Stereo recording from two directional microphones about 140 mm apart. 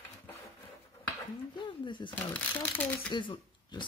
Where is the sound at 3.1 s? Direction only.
35° left (ahead or behind).